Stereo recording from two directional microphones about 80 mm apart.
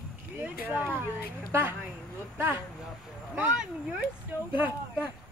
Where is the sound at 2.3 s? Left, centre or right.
Right.